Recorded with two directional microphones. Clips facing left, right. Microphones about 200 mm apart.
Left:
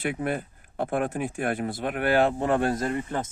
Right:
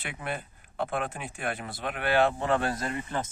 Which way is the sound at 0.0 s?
45° left (ahead or behind).